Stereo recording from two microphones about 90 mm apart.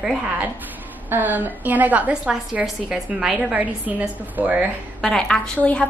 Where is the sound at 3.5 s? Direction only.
20° right (ahead or behind).